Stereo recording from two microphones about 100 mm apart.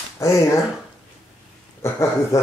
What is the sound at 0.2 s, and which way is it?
Speech, 30° left (ahead or behind).